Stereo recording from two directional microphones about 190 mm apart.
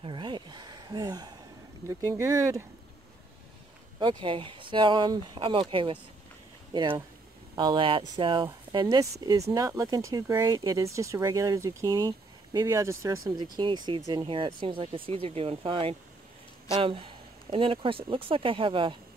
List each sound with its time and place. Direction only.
0.0 s a sound: 25° right (ahead or behind)
1.9 s speech: 15° right (ahead or behind)
4.0 s speech: 25° right (ahead or behind)